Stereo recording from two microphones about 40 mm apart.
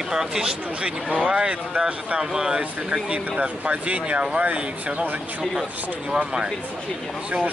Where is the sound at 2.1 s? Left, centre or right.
Centre.